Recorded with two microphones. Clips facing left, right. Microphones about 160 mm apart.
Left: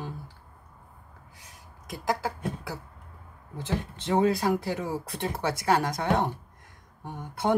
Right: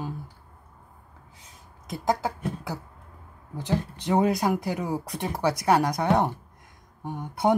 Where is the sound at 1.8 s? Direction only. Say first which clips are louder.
Right 3 dB; 20° right (ahead or behind).